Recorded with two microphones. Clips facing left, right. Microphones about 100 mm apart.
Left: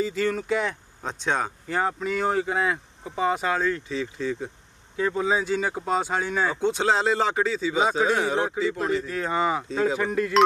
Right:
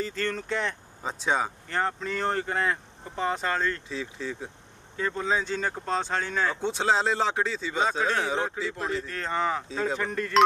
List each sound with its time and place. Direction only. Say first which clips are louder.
0.0 s speech: left 5 dB; 5° left (ahead or behind)
1.8 s speech: left 3 dB; 10° left (ahead or behind)